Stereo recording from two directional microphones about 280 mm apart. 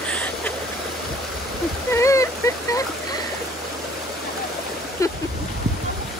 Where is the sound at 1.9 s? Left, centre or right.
Centre.